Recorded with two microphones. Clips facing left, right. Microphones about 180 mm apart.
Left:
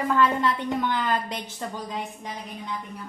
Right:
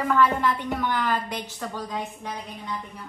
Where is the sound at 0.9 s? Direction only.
25° left (ahead or behind).